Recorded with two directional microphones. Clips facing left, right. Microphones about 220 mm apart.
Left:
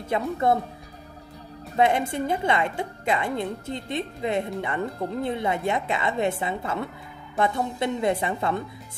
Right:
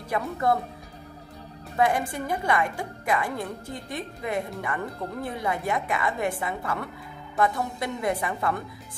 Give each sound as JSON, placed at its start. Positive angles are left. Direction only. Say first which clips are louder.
{"t": 0.1, "sound": "a woman's voice", "louder": "left 2 dB", "side_deg": 25}
{"t": 1.8, "sound": "a woman's voice", "louder": "left 3 dB", "side_deg": 25}